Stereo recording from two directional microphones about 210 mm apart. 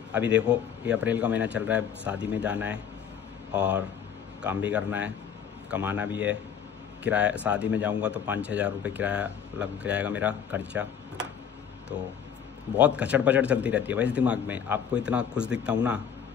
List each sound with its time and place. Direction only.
0.1 s speech: 5° right (ahead or behind)
12.7 s a man's voice: 5° right (ahead or behind)